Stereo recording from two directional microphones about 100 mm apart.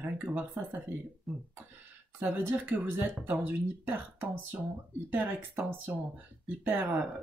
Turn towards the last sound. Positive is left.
turn(degrees=-15)  # may be behind; listen again after turning